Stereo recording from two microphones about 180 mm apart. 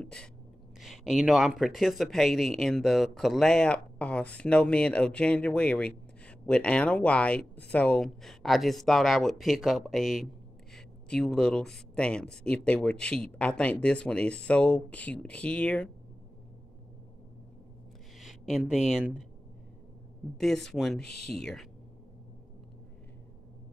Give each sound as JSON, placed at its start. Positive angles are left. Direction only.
{"t": 0.0, "sound": "a sound", "side_deg": 5}
{"t": 0.7, "sound": "speech", "side_deg": 0}
{"t": 18.2, "sound": "speech", "side_deg": 0}
{"t": 20.3, "sound": "speech", "side_deg": 0}
{"t": 21.0, "sound": "speech", "side_deg": 65}
{"t": 21.4, "sound": "speech", "side_deg": 0}